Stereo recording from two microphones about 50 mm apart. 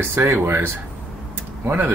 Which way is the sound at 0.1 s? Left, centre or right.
Right.